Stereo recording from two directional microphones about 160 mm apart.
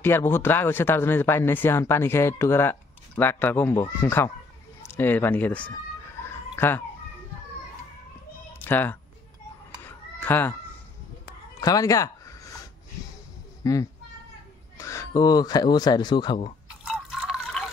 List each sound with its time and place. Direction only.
0.0 s speech: 15° left (ahead or behind)
6.2 s fowl: 15° left (ahead or behind)
8.5 s speech: 10° left (ahead or behind)
9.8 s cat: 10° left (ahead or behind)
11.6 s speech: 20° left (ahead or behind)
13.6 s a child's voice: 20° left (ahead or behind)
16.8 s drip: 5° right (ahead or behind)